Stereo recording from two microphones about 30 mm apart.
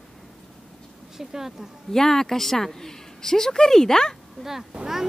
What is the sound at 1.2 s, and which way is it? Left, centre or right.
Speech, centre.